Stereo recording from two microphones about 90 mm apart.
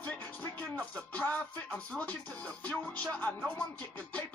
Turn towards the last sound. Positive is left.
turn(degrees=15)  # may be behind; listen again after turning